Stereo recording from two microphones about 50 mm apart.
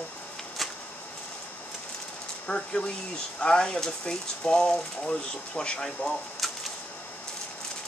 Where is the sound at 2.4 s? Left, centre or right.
Left.